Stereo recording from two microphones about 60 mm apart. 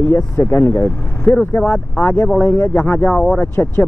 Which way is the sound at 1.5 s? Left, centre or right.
Left.